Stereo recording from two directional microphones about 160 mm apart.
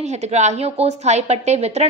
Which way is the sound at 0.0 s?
45° right (ahead or behind).